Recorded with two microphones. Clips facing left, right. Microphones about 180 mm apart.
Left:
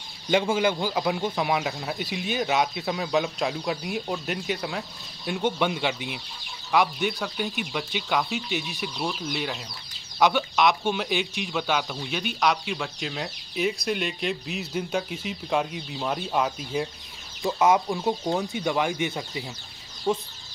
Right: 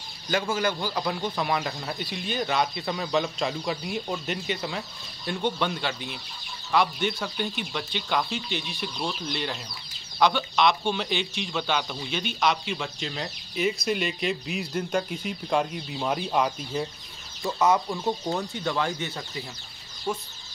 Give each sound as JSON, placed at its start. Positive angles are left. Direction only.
{"t": 0.3, "sound": "speech", "side_deg": 15}
{"t": 17.4, "sound": "speech", "side_deg": 15}